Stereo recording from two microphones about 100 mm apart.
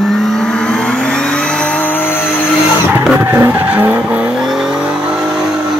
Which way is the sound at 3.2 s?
20° right (ahead or behind).